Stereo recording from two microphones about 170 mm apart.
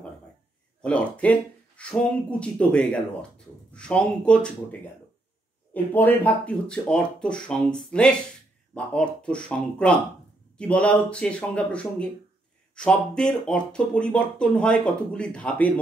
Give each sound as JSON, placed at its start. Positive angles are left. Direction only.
{"t": 0.8, "sound": "speech", "side_deg": 5}